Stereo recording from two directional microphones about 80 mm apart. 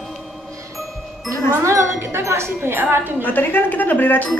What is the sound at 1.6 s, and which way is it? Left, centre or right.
A woman's voice, right.